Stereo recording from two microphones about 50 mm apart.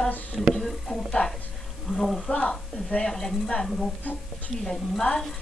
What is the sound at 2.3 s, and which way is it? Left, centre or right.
A woman's voice, left.